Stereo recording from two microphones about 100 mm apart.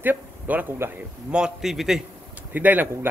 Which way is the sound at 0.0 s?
20° right (ahead or behind).